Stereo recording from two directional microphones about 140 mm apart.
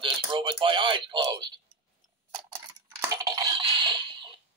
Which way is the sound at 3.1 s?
25° right (ahead or behind).